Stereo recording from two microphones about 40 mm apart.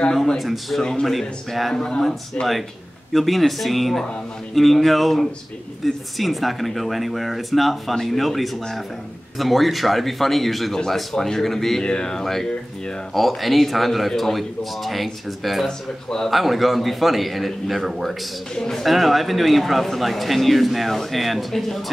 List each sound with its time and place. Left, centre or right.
0.4 s a man's voice: centre
1.8 s speech: centre
3.1 s a man's voice: centre
11.8 s a man's voice: left; by 15.6 s centre
15.6 s speech: centre
16.3 s a man's voice: centre